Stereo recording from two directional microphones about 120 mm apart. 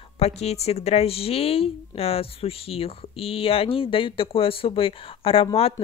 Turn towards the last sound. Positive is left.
turn(degrees=55)  # may be behind; listen again after turning